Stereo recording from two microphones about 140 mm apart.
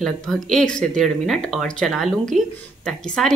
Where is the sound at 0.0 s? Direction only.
5° left (ahead or behind).